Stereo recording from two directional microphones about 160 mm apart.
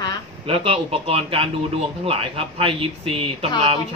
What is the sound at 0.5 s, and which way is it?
Speech, 35° right (ahead or behind).